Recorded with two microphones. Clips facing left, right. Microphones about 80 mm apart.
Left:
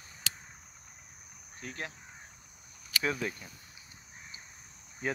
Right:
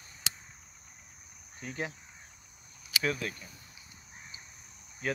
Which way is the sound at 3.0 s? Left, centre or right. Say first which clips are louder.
Even; centre.